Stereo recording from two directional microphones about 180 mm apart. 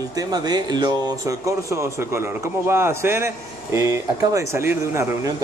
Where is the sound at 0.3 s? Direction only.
20° right (ahead or behind).